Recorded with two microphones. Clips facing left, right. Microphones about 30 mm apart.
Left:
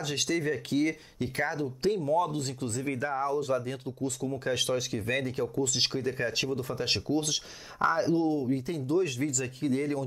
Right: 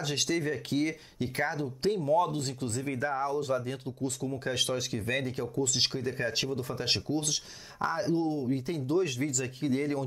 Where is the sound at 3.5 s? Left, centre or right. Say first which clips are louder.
Left 1 dB; centre.